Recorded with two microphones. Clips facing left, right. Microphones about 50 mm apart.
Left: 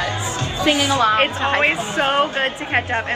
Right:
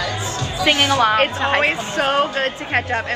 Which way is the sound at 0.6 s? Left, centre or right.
Right.